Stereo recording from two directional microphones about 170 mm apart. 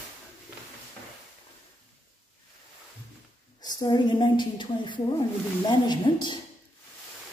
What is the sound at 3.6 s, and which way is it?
A woman's voice, 25° left (ahead or behind).